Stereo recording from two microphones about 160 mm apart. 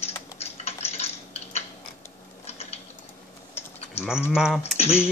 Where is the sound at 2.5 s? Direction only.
40° left (ahead or behind).